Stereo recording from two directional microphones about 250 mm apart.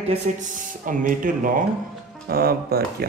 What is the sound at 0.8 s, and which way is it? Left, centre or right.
Speech, right.